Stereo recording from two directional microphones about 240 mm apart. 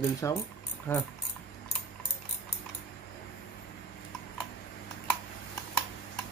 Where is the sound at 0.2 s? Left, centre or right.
Centre.